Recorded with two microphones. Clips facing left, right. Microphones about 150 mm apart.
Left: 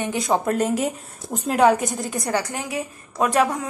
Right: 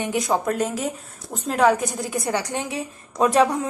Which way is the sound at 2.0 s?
10° right (ahead or behind).